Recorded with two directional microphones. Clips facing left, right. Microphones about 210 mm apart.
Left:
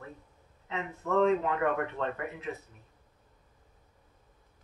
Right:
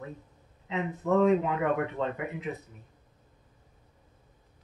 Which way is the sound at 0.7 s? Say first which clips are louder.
Right 5 dB; 15° right (ahead or behind).